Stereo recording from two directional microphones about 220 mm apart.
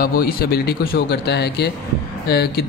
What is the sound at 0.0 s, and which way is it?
Speech, 40° left (ahead or behind).